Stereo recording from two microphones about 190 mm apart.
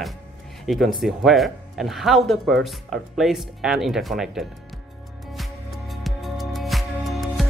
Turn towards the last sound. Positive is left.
turn(degrees=0)  # may be behind; listen again after turning